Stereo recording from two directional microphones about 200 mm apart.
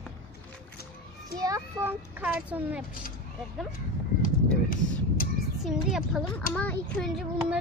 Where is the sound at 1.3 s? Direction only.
15° right (ahead or behind).